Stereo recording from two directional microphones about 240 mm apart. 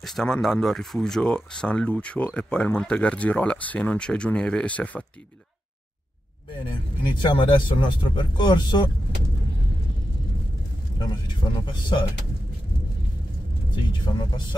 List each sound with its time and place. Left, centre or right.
0.0 s speech: centre
6.5 s speech: left
11.0 s speech: centre
14.0 s speech: centre